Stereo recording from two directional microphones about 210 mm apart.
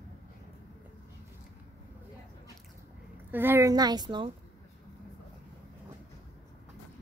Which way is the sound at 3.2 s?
10° right (ahead or behind).